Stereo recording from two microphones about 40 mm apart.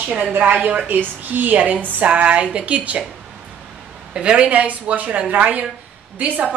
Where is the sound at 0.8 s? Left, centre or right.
Right.